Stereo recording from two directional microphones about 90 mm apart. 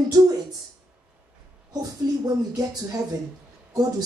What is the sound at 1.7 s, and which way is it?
Speech, 45° right (ahead or behind).